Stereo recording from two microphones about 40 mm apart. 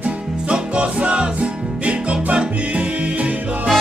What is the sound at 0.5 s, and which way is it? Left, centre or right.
Music, right.